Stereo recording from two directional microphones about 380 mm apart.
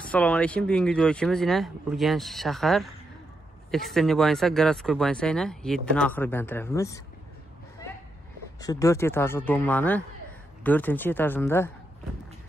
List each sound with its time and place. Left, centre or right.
0.0 s speech: centre
8.5 s speech: centre